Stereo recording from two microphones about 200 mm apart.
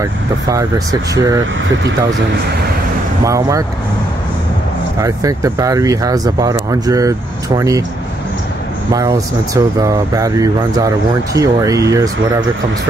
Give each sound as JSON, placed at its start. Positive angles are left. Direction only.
{"t": 0.0, "sound": "speech", "side_deg": -15}
{"t": 3.3, "sound": "speech", "side_deg": -15}
{"t": 5.0, "sound": "speech", "side_deg": -15}
{"t": 8.9, "sound": "speech", "side_deg": -15}